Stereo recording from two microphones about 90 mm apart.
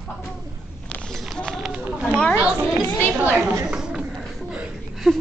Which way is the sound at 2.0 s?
10° left (ahead or behind).